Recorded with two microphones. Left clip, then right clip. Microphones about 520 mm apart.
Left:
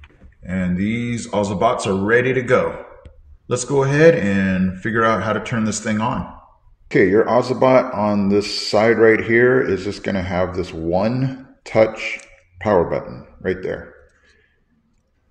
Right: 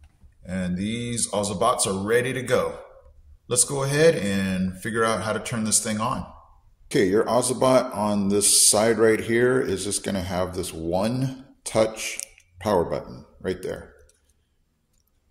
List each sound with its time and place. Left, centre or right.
0.5 s speech: right